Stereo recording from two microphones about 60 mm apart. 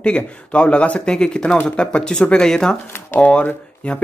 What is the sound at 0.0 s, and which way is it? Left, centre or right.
Speech, centre.